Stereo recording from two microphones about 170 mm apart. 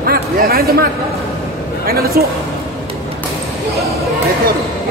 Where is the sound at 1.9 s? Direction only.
60° right (ahead or behind).